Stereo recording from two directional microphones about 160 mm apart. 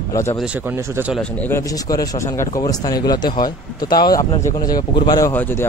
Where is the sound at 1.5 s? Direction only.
20° left (ahead or behind).